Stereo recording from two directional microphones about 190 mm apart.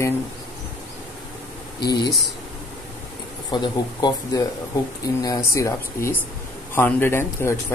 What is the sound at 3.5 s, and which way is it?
Speech, 20° left (ahead or behind).